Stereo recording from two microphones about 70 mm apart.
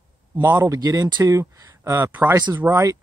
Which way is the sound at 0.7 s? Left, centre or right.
Right.